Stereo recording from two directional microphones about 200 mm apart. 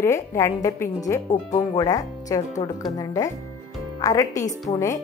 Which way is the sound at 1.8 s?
15° left (ahead or behind).